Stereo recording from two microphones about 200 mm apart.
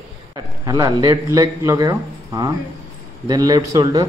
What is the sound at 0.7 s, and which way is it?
A man's voice, 20° right (ahead or behind).